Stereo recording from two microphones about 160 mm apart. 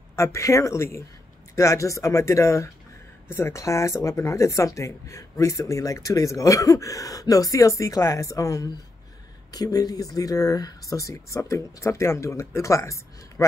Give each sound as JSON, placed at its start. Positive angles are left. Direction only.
{"t": 0.1, "sound": "speech", "side_deg": 15}